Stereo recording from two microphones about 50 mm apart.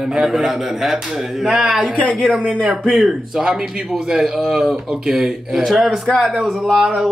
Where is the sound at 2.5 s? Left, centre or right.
Centre.